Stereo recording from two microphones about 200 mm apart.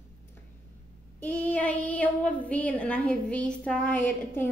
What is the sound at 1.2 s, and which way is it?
A woman's voice, 5° left (ahead or behind).